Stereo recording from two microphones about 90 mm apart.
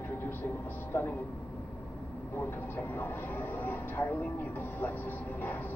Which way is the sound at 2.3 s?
20° left (ahead or behind).